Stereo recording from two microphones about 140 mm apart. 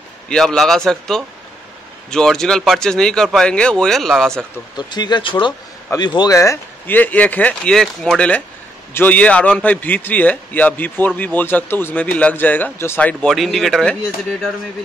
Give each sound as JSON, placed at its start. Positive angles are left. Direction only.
{"t": 0.3, "sound": "speech", "side_deg": 5}
{"t": 4.7, "sound": "a man's voice", "side_deg": 30}